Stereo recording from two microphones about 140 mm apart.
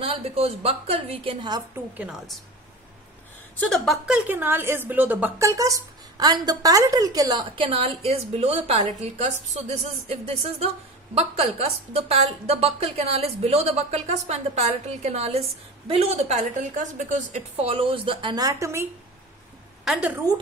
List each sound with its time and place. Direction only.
0.0 s a woman's voice: 45° right (ahead or behind)
2.0 s a woman's voice: 5° right (ahead or behind)
3.6 s a woman's voice: centre (ahead or behind); by 17.4 s 65° right (ahead or behind)
17.6 s a woman's voice: 40° right (ahead or behind); by 18.9 s 20° right (ahead or behind)
19.8 s a woman's voice: centre (ahead or behind)